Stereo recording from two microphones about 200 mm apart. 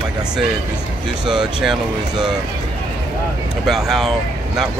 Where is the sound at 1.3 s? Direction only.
5° right (ahead or behind).